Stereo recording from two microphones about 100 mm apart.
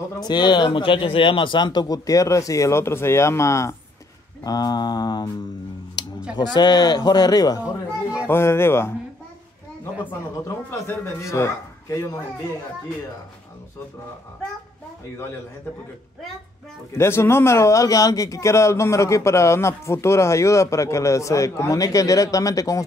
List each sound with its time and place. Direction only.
0.2 s speech: 50° left (ahead or behind); by 3.7 s 30° left (ahead or behind)
4.4 s mantra: 40° left (ahead or behind)
6.0 s a sound: 45° left (ahead or behind)
6.3 s speech: 45° left (ahead or behind)
8.3 s speech: 25° left (ahead or behind)
10.7 s speech: 30° left (ahead or behind)
16.9 s speech: 25° left (ahead or behind)